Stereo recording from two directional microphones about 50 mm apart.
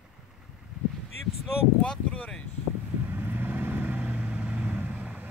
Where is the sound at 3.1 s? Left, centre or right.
Right.